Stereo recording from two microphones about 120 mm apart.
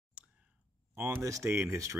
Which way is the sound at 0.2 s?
10° right (ahead or behind).